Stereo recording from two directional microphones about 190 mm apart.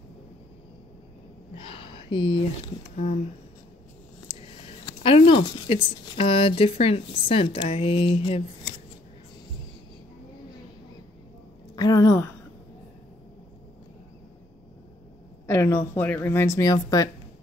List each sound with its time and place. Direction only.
1.6 s speech: 25° left (ahead or behind)
4.8 s speech: 30° left (ahead or behind)
11.7 s a woman's voice: 20° left (ahead or behind)
15.4 s speech: 15° left (ahead or behind)